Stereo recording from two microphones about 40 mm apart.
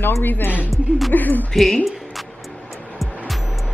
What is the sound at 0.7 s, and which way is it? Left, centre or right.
Speech, centre.